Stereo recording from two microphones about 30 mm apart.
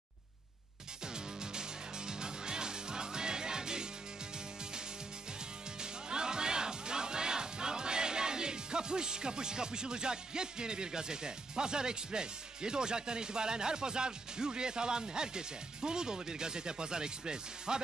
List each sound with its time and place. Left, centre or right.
1.0 s music: right
5.8 s speech: right